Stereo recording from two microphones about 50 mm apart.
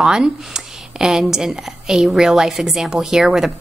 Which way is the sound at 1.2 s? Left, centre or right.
Centre.